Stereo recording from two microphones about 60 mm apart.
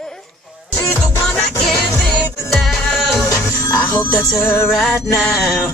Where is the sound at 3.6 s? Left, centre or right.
Left.